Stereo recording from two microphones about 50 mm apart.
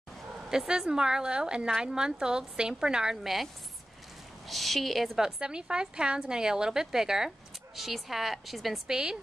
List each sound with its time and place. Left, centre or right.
0.5 s a woman's voice: centre
4.5 s a woman's voice: centre
8.8 s a woman's voice: centre